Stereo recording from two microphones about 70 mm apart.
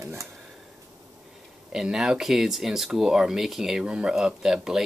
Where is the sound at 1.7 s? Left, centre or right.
Centre.